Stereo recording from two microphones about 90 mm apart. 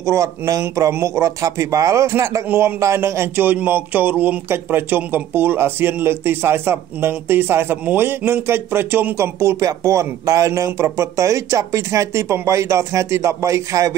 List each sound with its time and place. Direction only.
0.0 s speech: 35° right (ahead or behind)
2.4 s speech: 20° right (ahead or behind)
2.8 s speech: 30° right (ahead or behind)